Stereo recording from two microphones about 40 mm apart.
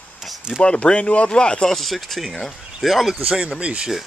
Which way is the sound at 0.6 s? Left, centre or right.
Left.